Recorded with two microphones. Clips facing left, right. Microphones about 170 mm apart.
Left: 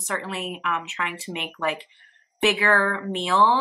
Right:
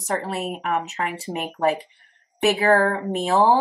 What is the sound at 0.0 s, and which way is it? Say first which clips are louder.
Speech: right 4 dB; 40° right (ahead or behind).